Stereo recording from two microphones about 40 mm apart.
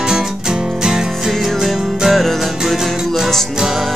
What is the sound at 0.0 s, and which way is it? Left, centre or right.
Music, centre.